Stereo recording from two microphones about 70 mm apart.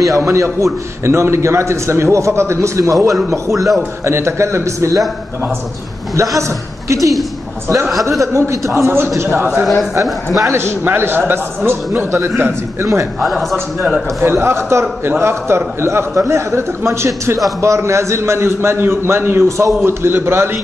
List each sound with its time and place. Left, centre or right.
0.0 s a man's voice: right
6.1 s a man's voice: right
8.2 s a man's voice: right
10.0 s a man's voice: centre
10.5 s a man's voice: right
13.2 s a man's voice: centre
14.2 s a man's voice: right